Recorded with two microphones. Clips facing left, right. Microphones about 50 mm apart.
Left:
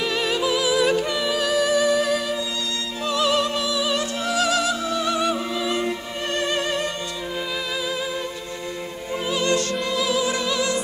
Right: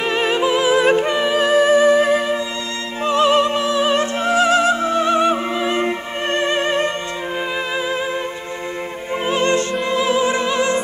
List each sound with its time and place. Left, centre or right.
0.0 s music: right
9.2 s opera: right